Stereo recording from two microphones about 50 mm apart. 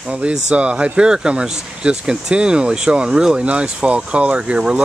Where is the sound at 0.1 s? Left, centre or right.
Centre.